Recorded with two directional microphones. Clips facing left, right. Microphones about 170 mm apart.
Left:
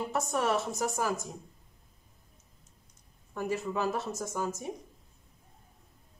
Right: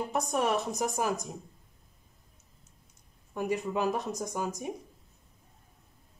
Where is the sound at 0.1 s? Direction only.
15° right (ahead or behind).